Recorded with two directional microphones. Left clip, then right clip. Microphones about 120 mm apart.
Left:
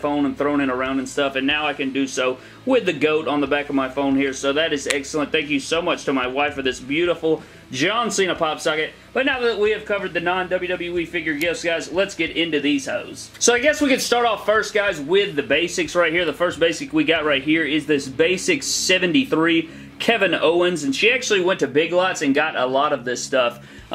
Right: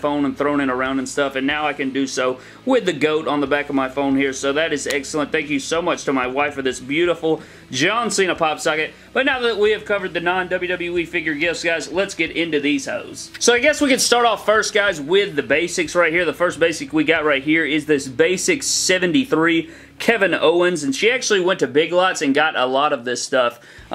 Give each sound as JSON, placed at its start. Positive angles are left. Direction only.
{"t": 0.0, "sound": "speech", "side_deg": -25}